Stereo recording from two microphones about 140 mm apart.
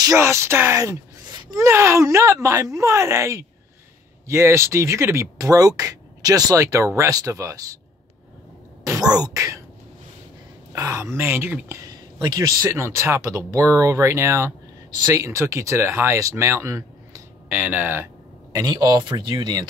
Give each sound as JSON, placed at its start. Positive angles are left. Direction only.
{"t": 0.0, "sound": "speech", "side_deg": -20}
{"t": 8.8, "sound": "speech", "side_deg": -25}
{"t": 10.7, "sound": "speech", "side_deg": -20}
{"t": 12.2, "sound": "speech", "side_deg": -25}
{"t": 18.6, "sound": "speech", "side_deg": -30}